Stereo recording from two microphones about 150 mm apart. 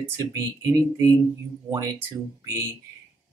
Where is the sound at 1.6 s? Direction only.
20° right (ahead or behind).